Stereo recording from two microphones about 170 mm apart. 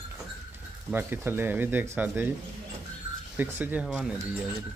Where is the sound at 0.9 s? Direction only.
10° right (ahead or behind).